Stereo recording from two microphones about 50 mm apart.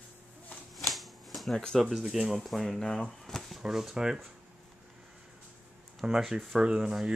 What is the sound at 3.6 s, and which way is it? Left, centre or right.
Speech, centre.